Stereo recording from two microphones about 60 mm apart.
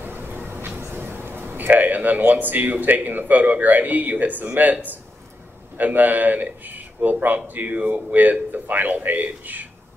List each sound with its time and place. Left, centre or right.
0.0 s a sound: right
2.4 s a man's voice: right
5.8 s a man's voice: right